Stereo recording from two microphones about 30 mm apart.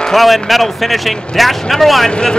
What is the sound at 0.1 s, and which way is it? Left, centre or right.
Speech, centre.